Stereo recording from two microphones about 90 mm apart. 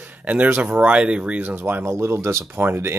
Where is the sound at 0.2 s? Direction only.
15° right (ahead or behind).